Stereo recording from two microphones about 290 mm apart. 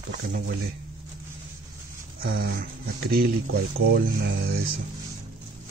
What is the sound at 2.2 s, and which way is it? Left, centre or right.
Speech, right.